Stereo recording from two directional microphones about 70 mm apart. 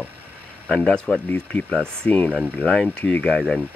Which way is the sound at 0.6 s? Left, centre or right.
Centre.